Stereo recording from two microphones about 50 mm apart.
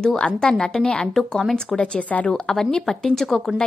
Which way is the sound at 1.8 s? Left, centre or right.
Left.